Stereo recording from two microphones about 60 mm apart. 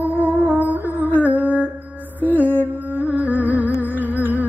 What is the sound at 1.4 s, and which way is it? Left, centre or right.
Music, right.